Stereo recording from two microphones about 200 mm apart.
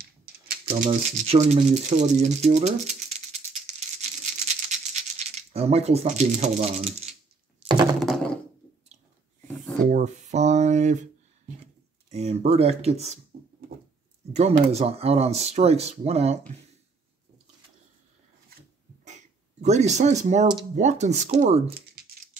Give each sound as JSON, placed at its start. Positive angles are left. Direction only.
{"t": 0.0, "sound": "typewriter", "side_deg": -50}
{"t": 0.7, "sound": "rattle", "side_deg": -40}
{"t": 7.6, "sound": "thunk", "side_deg": -20}
{"t": 8.0, "sound": "thunk", "side_deg": 0}
{"t": 9.8, "sound": "speech", "side_deg": -35}
{"t": 14.3, "sound": "speech", "side_deg": -30}
{"t": 19.0, "sound": "a sound", "side_deg": -35}
{"t": 20.7, "sound": "speech", "side_deg": -35}